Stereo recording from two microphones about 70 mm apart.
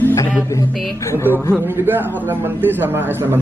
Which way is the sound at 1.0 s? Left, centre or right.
Left.